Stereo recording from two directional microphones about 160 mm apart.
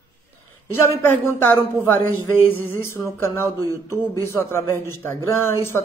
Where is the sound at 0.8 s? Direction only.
15° left (ahead or behind).